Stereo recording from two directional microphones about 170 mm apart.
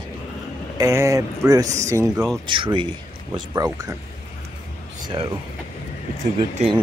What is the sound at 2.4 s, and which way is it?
Speech, 30° right (ahead or behind).